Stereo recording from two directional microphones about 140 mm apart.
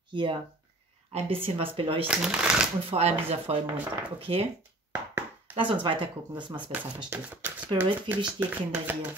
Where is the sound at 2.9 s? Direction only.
45° right (ahead or behind).